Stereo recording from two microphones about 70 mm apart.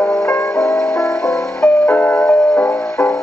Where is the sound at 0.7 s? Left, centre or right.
Centre.